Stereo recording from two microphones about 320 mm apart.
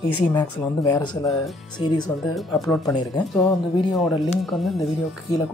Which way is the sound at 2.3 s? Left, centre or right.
Centre.